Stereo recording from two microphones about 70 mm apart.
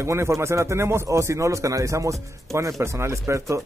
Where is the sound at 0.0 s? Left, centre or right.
Right.